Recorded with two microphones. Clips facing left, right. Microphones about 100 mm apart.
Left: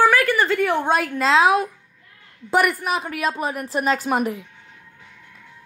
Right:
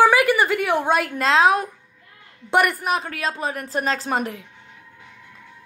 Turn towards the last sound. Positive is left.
turn(degrees=5)  # may be behind; listen again after turning